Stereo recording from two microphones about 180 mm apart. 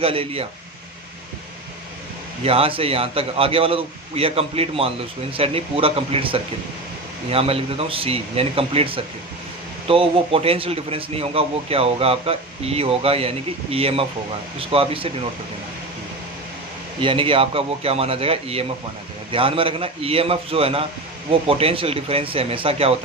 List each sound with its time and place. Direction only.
0.0 s a man's voice: 30° right (ahead or behind)
2.4 s a man's voice: 30° right (ahead or behind)
17.0 s a man's voice: 30° right (ahead or behind)